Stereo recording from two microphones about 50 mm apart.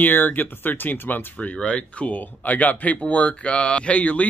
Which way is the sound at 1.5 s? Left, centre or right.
Left.